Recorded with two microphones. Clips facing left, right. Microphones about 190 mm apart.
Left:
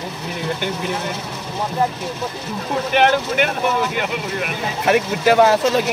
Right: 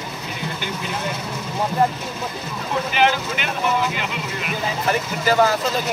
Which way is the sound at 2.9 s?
55° left (ahead or behind).